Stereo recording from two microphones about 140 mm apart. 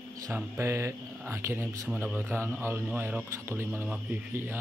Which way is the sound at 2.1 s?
15° right (ahead or behind).